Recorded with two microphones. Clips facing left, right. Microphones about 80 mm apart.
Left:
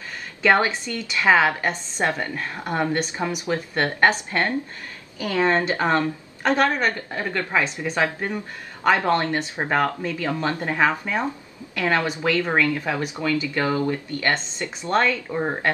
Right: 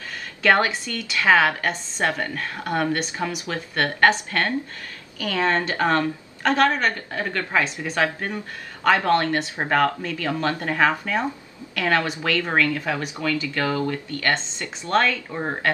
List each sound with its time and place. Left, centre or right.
0.4 s speech: centre
6.6 s a woman's voice: centre
6.9 s speech: left
15.3 s a woman's voice: centre